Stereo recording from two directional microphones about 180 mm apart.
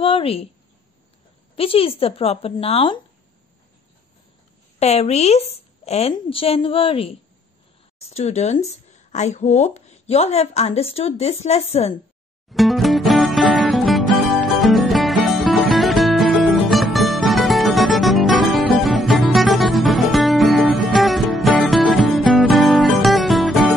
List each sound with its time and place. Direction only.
0.0 s speech: 30° left (ahead or behind)
1.6 s speech: 30° left (ahead or behind)
4.7 s speech: 35° left (ahead or behind)
12.4 s music: centre (ahead or behind)